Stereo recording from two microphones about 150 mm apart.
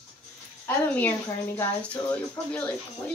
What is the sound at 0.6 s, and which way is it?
Speech, 10° left (ahead or behind).